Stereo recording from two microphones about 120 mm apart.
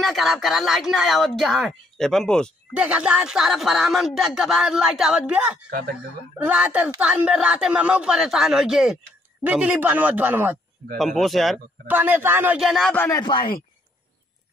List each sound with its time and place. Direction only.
0.0 s speech: centre (ahead or behind)
2.7 s speech: 10° right (ahead or behind)
11.0 s speech: centre (ahead or behind)
11.9 s speech: 15° right (ahead or behind)
12.5 s speech: centre (ahead or behind)
13.1 s speech: 40° left (ahead or behind)